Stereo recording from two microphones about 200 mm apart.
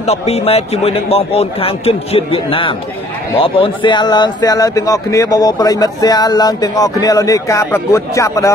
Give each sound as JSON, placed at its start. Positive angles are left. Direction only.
{"t": 0.0, "sound": "a man's voice", "side_deg": 30}